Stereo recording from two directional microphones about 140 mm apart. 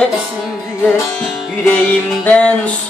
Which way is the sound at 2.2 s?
10° left (ahead or behind).